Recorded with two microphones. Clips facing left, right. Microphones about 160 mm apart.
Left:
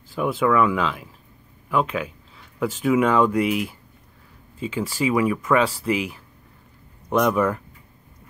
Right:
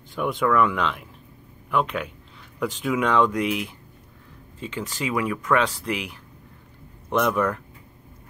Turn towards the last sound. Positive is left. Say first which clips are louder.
# left 2 dB
turn(degrees=5)  # may be behind; listen again after turning